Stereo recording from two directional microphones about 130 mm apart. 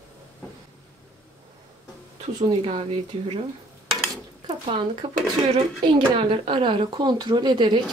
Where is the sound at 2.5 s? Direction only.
45° right (ahead or behind).